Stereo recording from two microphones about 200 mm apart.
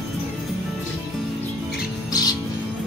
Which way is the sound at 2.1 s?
20° left (ahead or behind).